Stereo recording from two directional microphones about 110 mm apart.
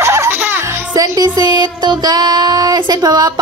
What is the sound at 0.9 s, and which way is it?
Child singing, 35° right (ahead or behind).